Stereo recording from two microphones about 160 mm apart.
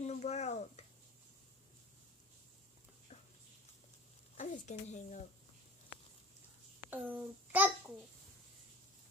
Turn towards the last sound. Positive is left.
turn(degrees=-10)  # may be behind; listen again after turning